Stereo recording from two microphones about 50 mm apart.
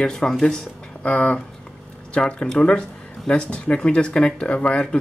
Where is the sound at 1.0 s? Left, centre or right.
Left.